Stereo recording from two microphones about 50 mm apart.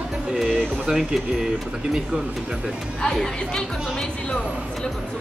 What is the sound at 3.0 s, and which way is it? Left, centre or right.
Speech, centre.